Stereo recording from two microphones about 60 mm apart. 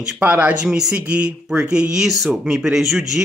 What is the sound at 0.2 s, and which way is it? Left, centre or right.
Speech, right.